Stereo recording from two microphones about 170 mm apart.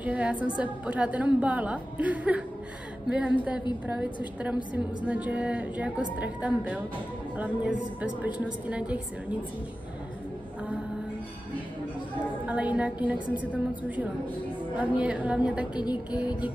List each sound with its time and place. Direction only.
0.0 s a woman's voice: 10° right (ahead or behind)
12.4 s a woman's voice: 5° right (ahead or behind)
15.8 s music: 25° left (ahead or behind)